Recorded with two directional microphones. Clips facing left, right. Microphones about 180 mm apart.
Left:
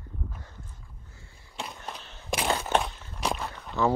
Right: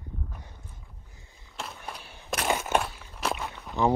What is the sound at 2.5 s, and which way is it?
Crushing, 15° right (ahead or behind).